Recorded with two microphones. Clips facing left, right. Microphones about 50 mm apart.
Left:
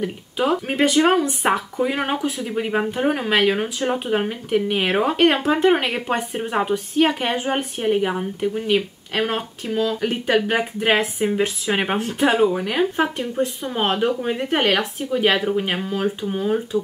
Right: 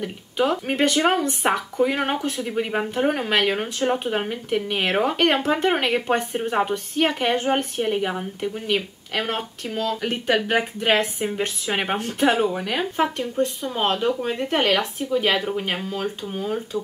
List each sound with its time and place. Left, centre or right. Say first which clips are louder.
0.0 s speech: left 1 dB; centre
13.2 s speech: even; centre